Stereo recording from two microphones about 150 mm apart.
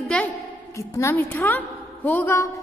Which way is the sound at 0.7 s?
20° left (ahead or behind).